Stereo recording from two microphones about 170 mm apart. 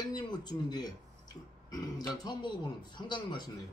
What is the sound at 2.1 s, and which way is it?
Speech, 25° left (ahead or behind).